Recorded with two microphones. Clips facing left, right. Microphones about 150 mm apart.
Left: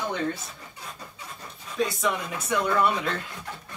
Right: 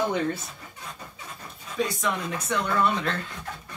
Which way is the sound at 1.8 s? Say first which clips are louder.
Left 1 dB; centre (ahead or behind).